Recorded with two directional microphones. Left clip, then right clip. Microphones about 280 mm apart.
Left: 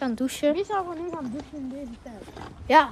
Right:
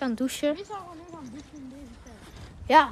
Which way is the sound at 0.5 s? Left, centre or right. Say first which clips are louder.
Left 11 dB; left.